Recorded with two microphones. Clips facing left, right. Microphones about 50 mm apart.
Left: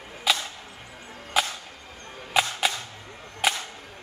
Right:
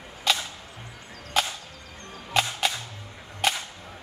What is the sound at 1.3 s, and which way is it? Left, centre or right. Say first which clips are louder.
Chop: left 1 dB; centre.